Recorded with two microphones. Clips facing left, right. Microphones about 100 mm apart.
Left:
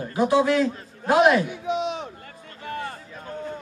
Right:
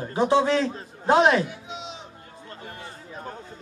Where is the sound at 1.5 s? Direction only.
60° left (ahead or behind).